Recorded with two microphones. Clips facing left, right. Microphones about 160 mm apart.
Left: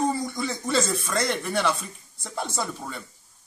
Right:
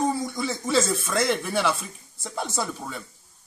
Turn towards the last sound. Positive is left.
turn(degrees=0)  # may be behind; listen again after turning